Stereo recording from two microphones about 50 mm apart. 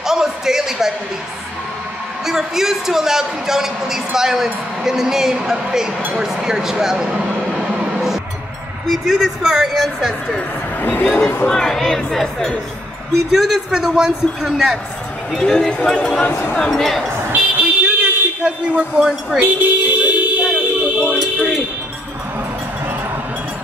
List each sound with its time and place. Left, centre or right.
0.0 s a sound: centre
2.2 s speech: centre
6.1 s a sound: centre
8.8 s speech: centre
10.8 s speech: left
11.4 s speech: centre
13.3 s speech: centre
15.3 s speech: centre
17.3 s vehicle: right
18.4 s a man's voice: right
18.9 s speech: centre
19.4 s music: right
20.4 s a sound: centre